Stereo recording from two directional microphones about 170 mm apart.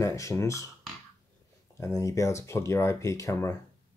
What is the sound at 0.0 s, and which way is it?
Speech, 20° left (ahead or behind).